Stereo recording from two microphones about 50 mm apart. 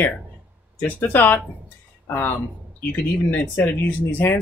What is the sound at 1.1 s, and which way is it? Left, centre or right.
Speech, left.